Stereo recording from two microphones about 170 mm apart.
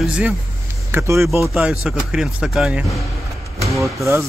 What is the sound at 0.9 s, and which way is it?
Speech, 15° right (ahead or behind).